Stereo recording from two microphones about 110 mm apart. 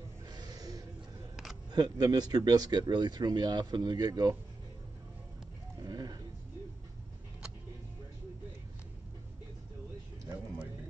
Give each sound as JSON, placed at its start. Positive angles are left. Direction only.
{"t": 0.3, "sound": "music", "side_deg": -40}
{"t": 1.3, "sound": "camera", "side_deg": 0}
{"t": 1.7, "sound": "speech", "side_deg": -35}
{"t": 5.8, "sound": "a sound", "side_deg": -35}